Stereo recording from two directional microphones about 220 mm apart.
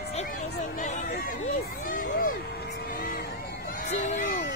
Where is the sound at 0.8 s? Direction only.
35° left (ahead or behind).